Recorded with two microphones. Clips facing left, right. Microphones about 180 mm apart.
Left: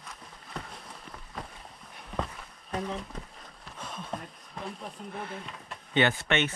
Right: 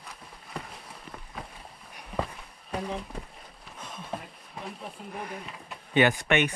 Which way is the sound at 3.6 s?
Centre (ahead or behind).